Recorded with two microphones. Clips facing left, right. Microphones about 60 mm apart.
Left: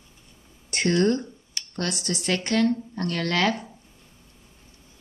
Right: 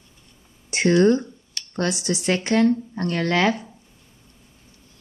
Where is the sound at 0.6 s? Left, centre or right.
Centre.